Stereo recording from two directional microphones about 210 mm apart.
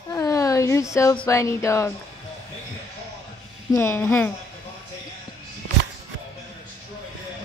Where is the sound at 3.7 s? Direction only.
10° left (ahead or behind).